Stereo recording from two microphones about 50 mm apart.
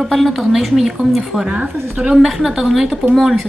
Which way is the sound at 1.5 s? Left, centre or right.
Right.